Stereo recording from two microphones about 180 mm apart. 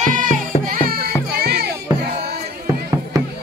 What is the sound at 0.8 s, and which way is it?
Music, 60° right (ahead or behind).